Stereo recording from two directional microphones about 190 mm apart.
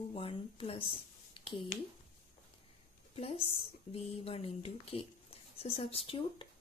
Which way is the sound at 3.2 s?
30° left (ahead or behind).